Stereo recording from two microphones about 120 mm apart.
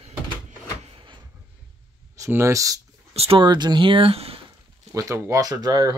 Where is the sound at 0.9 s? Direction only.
45° right (ahead or behind).